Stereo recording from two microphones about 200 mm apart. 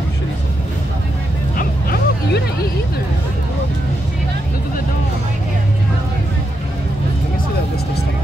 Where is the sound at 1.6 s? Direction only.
50° left (ahead or behind).